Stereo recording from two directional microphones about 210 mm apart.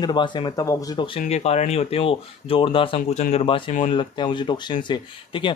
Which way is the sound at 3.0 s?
35° left (ahead or behind).